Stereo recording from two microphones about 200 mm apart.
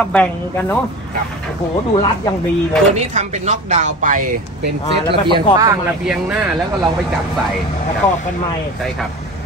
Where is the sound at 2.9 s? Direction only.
35° right (ahead or behind).